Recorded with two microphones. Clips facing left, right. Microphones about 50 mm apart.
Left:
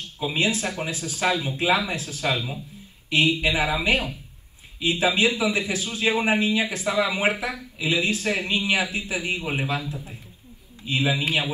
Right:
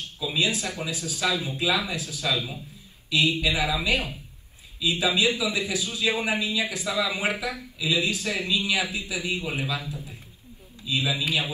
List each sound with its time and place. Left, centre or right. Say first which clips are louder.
0.2 s a man's voice: left 2 dB; left